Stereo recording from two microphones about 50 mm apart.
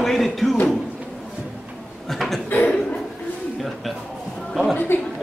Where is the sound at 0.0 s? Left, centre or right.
Centre.